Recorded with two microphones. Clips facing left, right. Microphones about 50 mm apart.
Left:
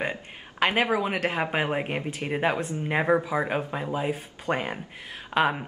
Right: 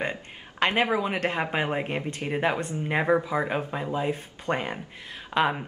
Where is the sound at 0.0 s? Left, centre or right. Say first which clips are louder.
Even; centre.